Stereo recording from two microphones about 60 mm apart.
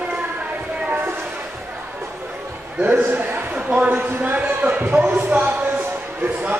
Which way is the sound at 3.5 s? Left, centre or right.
Right.